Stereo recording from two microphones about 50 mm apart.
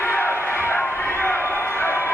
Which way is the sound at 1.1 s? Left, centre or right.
Left.